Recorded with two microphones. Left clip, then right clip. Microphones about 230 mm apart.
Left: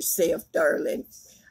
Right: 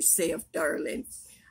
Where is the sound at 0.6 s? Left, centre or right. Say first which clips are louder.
Left 6 dB; centre.